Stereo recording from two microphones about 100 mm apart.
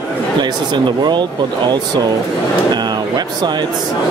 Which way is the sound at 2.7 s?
45° right (ahead or behind).